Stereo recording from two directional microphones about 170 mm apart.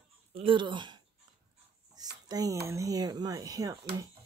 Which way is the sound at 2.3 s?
20° right (ahead or behind).